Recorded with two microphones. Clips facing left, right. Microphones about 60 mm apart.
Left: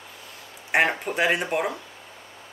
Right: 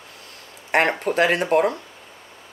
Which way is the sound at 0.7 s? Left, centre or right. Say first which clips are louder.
Right 3 dB; right.